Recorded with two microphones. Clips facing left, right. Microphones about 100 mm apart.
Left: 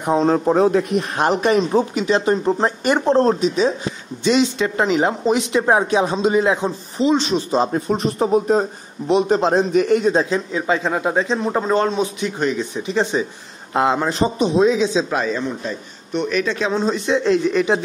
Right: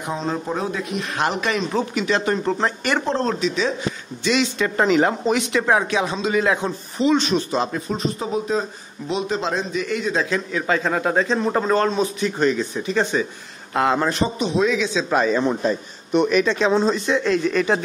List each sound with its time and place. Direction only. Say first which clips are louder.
0.0 s speech: left 9 dB; 55° left (ahead or behind)
1.1 s a man's voice: left 5 dB; 35° left (ahead or behind)
2.4 s a man's voice: left 3 dB; 10° left (ahead or behind)
3.2 s speech: left 6 dB; 45° left (ahead or behind)
4.2 s a man's voice: left 4 dB; 30° left (ahead or behind)
4.6 s a man's voice: even; 10° left (ahead or behind)
5.3 s a man's voice: left 2 dB; 25° left (ahead or behind)
7.9 s speech: left 6 dB; 55° left (ahead or behind)
10.3 s a man's voice: left 2 dB; 20° left (ahead or behind)
12.5 s a man's voice: left 1 dB; 20° left (ahead or behind)
15.0 s speech: right 3 dB; centre (ahead or behind)
16.8 s a man's voice: left 2 dB; 15° left (ahead or behind)